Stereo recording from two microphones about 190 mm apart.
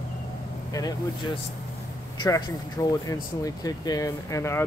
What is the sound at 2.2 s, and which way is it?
Speech, 25° left (ahead or behind).